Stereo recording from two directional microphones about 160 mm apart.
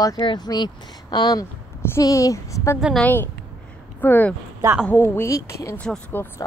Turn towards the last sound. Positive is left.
turn(degrees=15)  # may be behind; listen again after turning